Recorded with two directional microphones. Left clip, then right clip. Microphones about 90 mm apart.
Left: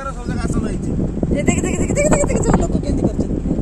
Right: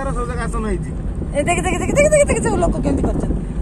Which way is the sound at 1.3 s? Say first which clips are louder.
Right 3 dB; 5° left (ahead or behind).